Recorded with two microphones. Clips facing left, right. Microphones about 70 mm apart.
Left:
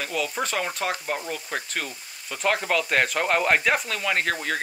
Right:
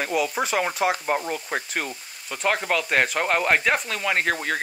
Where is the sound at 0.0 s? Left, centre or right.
Centre.